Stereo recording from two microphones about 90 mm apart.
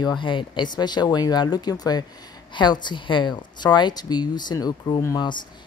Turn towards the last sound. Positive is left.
turn(degrees=60)  # may be behind; listen again after turning